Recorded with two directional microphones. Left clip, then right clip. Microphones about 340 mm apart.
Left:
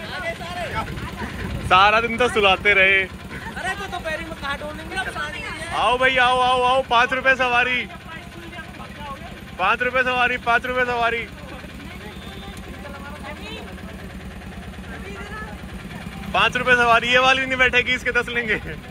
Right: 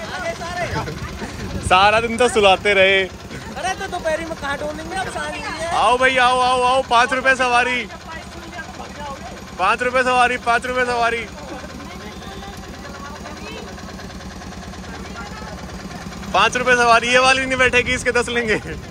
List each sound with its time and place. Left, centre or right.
1.7 s speech: centre
3.6 s a sound: right
5.8 s speech: centre
9.6 s speech: centre
16.3 s speech: centre